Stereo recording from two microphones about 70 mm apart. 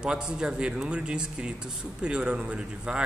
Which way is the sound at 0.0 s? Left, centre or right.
Centre.